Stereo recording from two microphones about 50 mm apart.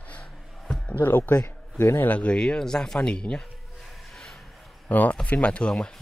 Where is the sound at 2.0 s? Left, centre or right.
Left.